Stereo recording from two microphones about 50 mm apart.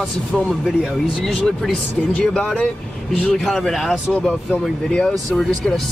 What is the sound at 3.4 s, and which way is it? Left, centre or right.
Speech, centre.